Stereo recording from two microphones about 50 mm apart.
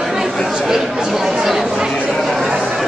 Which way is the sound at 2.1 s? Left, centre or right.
Centre.